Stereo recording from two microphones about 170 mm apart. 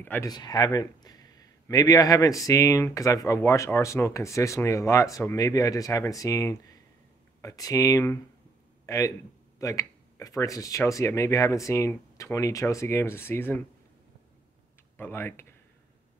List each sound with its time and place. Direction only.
0.0 s speech: 10° left (ahead or behind)
0.3 s speech: 25° left (ahead or behind)
15.0 s speech: 15° left (ahead or behind)